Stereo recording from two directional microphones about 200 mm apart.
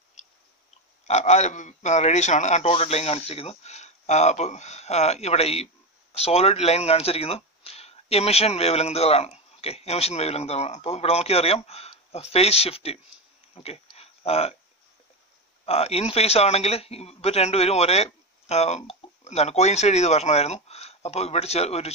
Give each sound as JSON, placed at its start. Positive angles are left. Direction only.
{"t": 1.0, "sound": "speech", "side_deg": 35}
{"t": 13.6, "sound": "a sound", "side_deg": 30}
{"t": 15.6, "sound": "speech", "side_deg": 30}